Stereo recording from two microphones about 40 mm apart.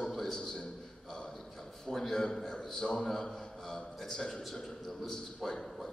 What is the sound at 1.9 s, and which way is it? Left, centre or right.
A man's voice, centre.